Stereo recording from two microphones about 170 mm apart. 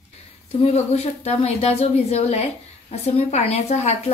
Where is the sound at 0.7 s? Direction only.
40° left (ahead or behind).